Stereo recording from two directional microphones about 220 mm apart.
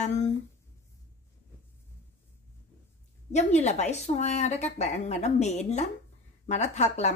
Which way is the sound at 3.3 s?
30° left (ahead or behind).